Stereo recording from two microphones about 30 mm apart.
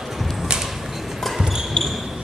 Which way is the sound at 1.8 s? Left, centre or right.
Left.